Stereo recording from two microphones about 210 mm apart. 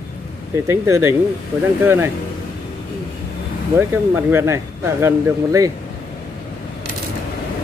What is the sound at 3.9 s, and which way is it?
Speech, 10° right (ahead or behind).